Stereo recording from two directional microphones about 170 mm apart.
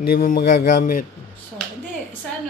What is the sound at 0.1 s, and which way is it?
Speech, 60° left (ahead or behind).